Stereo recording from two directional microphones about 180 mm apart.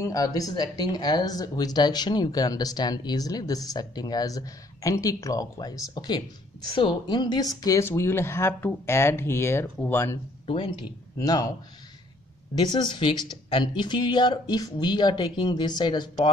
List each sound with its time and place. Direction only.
0.0 s speech: 20° left (ahead or behind)
10.4 s speech: 30° left (ahead or behind)
12.6 s speech: 25° left (ahead or behind)